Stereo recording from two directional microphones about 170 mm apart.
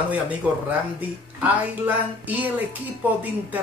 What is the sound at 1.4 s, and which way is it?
Speech, 10° right (ahead or behind).